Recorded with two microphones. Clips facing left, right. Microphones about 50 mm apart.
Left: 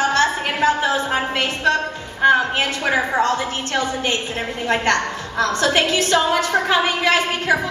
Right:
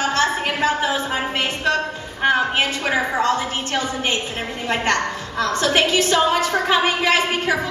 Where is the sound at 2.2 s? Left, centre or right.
Centre.